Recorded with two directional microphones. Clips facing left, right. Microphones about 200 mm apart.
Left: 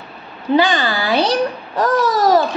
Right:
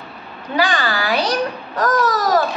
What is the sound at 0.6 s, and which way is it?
A woman's voice, 25° left (ahead or behind).